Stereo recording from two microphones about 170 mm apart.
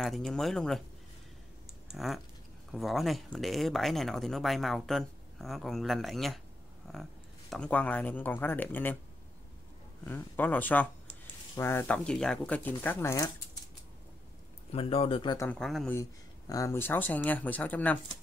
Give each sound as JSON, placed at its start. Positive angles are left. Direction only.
{"t": 0.0, "sound": "speech", "side_deg": 0}
{"t": 1.9, "sound": "speech", "side_deg": 0}
{"t": 10.0, "sound": "speech", "side_deg": 10}
{"t": 14.7, "sound": "speech", "side_deg": 35}
{"t": 15.6, "sound": "speech", "side_deg": 0}
{"t": 15.9, "sound": "speech", "side_deg": 20}